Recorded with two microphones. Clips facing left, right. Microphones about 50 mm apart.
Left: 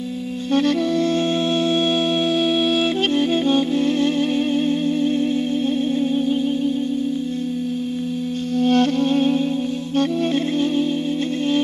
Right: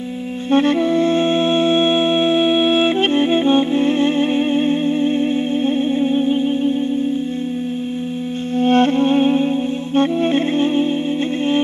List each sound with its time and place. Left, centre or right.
0.5 s music: right
8.5 s music: right